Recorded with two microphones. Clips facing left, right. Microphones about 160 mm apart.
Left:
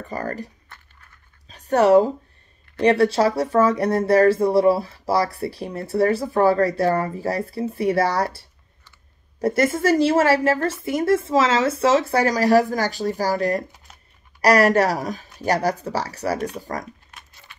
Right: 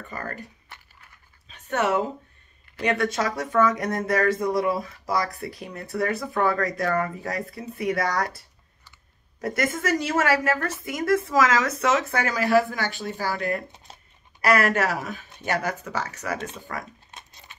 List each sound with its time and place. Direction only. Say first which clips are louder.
0.1 s speech: left 7 dB; 35° left (ahead or behind)
1.5 s a woman's voice: left 9 dB; 35° left (ahead or behind)
17.1 s a sound: even; 20° right (ahead or behind)